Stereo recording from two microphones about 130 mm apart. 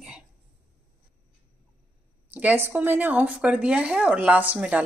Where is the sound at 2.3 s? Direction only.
15° right (ahead or behind).